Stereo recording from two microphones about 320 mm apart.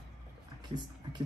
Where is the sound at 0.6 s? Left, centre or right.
Centre.